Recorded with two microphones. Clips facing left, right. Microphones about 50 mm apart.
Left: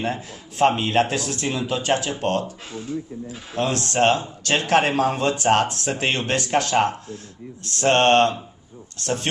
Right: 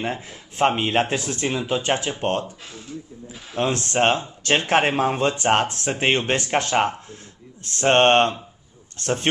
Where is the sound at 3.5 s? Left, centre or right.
Right.